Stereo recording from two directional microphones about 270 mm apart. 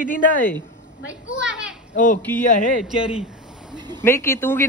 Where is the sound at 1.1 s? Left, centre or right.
Centre.